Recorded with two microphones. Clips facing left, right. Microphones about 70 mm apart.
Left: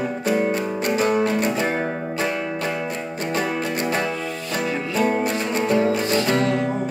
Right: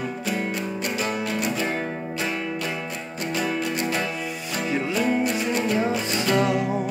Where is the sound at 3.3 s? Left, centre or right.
Left.